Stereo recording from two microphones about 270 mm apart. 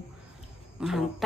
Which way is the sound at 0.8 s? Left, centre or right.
Centre.